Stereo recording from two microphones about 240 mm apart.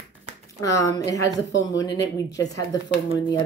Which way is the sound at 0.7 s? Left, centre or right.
Centre.